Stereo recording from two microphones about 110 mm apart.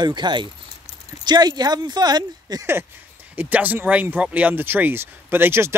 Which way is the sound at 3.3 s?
15° right (ahead or behind).